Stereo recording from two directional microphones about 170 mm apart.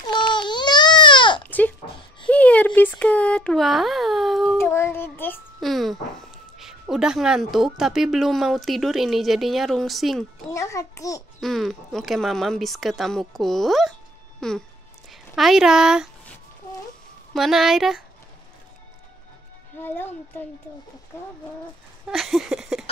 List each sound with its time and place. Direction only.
0.0 s babbling: 25° left (ahead or behind)
2.2 s a sound: 10° left (ahead or behind)
4.6 s child singing: 15° left (ahead or behind)
5.6 s speech: centre (ahead or behind)
10.5 s a child's voice: 20° left (ahead or behind)
11.4 s speech: centre (ahead or behind)
17.3 s speech: centre (ahead or behind)
19.8 s speech: 10° left (ahead or behind)
22.1 s a sound: centre (ahead or behind)